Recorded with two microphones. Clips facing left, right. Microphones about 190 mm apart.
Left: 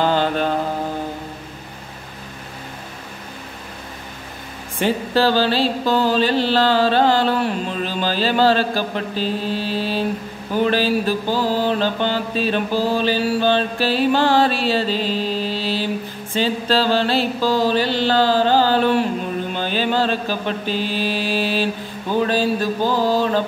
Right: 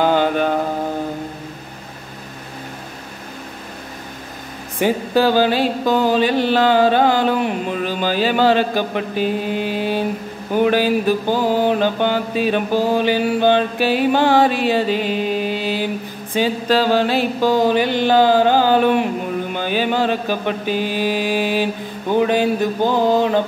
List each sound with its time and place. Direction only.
0.0 s mantra: 15° right (ahead or behind)
4.7 s mantra: 15° right (ahead or behind)
22.1 s a sound: 15° right (ahead or behind)